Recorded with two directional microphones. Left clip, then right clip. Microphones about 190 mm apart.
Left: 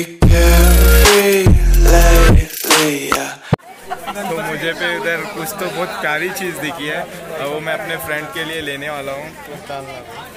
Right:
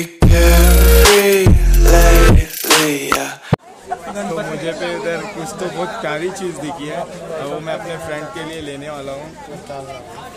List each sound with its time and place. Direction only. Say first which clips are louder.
0.0 s music: even; centre (ahead or behind)
4.6 s a man's voice: left 4 dB; 5° right (ahead or behind)